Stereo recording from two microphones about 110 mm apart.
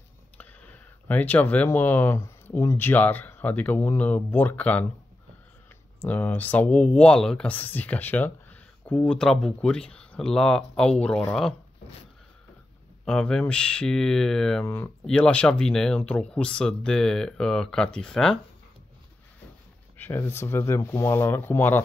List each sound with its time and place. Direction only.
0.4 s speech: 15° left (ahead or behind)
5.9 s speech: 15° left (ahead or behind)
13.0 s speech: 10° left (ahead or behind)
20.0 s speech: 25° left (ahead or behind)